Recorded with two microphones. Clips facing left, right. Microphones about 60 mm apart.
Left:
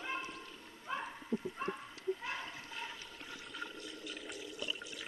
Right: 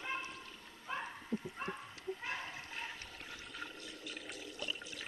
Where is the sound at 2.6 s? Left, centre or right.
Right.